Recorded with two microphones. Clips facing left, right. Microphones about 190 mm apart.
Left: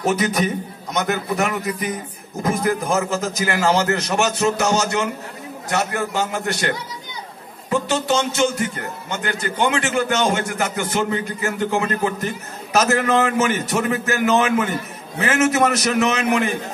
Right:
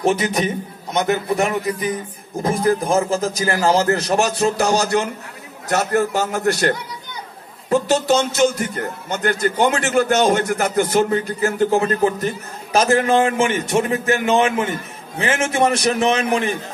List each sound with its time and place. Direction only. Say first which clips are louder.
0.0 s a man's voice: right 1 dB; 25° right (ahead or behind); by 6.7 s 40° right (ahead or behind)
7.7 s a man's voice: right 4 dB; 40° right (ahead or behind)